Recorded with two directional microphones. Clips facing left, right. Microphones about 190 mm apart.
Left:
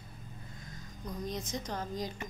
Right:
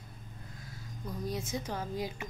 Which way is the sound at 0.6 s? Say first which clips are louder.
Right 1 dB; 5° right (ahead or behind).